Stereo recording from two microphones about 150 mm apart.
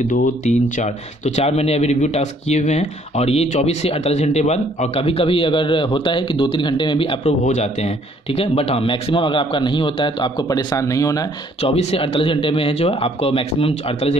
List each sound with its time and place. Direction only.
0.1 s speech: 60° left (ahead or behind); by 7.3 s 35° left (ahead or behind)
7.4 s speech: 50° left (ahead or behind); by 11.2 s 20° left (ahead or behind)
11.6 s speech: 45° left (ahead or behind)